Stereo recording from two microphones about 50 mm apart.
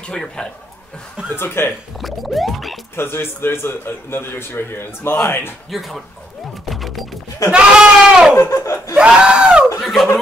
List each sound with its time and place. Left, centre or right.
0.1 s speech: centre
1.3 s a man's voice: left
2.0 s music: centre
3.0 s a man's voice: left
5.7 s music: centre
7.5 s goat: centre
8.4 s laughter: left
8.9 s a sound: right
9.8 s a sound: centre